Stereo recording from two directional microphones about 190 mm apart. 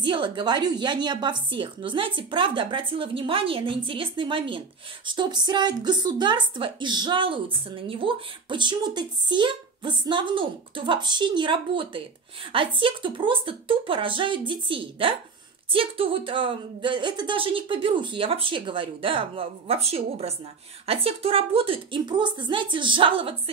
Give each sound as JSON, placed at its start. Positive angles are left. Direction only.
{"t": 0.0, "sound": "a woman's voice", "side_deg": -25}